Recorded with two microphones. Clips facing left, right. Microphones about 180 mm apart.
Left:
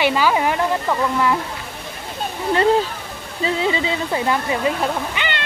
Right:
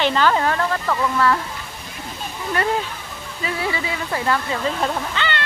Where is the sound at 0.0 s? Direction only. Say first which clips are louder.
Left 1 dB; 10° left (ahead or behind).